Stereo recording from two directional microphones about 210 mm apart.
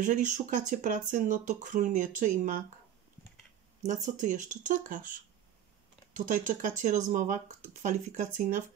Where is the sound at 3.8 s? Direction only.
35° right (ahead or behind).